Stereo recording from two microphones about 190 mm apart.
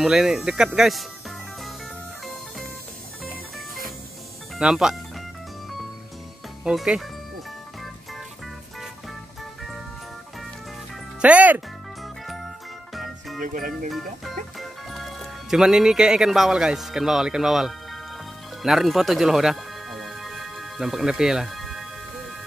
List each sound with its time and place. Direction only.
0.0 s speech: centre (ahead or behind)
4.6 s speech: 5° right (ahead or behind)
6.6 s speech: 5° right (ahead or behind)
9.4 s music: centre (ahead or behind)
11.1 s music: 5° right (ahead or behind)
13.4 s speech: 45° right (ahead or behind)
13.8 s music: centre (ahead or behind)